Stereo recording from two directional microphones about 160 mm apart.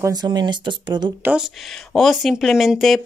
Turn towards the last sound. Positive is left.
turn(degrees=0)  # may be behind; listen again after turning